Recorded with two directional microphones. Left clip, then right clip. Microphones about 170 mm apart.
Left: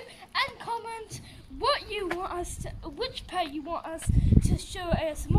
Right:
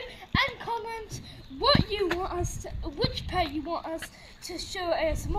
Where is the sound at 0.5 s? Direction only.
20° right (ahead or behind).